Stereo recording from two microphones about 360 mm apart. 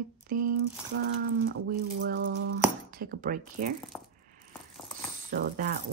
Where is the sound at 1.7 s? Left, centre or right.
Right.